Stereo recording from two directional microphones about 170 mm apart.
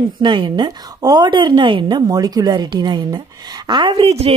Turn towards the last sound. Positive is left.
turn(degrees=-35)  # may be behind; listen again after turning